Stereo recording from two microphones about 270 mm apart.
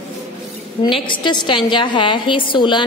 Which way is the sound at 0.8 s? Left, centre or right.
Centre.